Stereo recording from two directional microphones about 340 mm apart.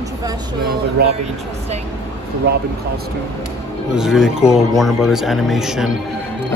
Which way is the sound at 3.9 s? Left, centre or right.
Centre.